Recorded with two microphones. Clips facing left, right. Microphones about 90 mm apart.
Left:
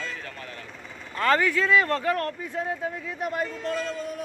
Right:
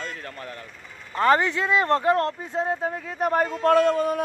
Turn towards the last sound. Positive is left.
turn(degrees=-65)  # may be behind; listen again after turning